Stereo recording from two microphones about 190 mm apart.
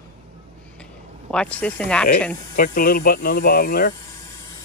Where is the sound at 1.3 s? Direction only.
5° left (ahead or behind).